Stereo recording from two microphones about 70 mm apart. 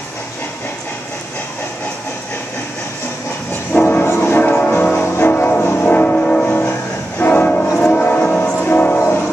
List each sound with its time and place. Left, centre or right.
3.7 s music: left
4.0 s music: left; by 6.7 s centre
7.2 s train: left
7.7 s music: centre